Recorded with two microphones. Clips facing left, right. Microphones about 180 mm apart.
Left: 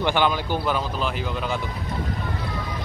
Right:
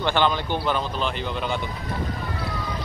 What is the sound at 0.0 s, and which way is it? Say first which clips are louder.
Speech: even; 10° left (ahead or behind).